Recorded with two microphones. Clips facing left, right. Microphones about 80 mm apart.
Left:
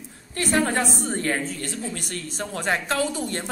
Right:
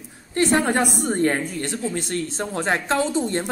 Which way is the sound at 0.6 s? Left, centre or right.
Centre.